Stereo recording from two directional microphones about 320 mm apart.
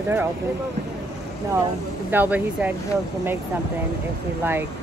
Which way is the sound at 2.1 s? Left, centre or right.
Centre.